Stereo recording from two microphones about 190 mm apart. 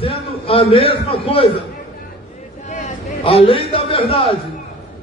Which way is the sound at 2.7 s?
35° left (ahead or behind).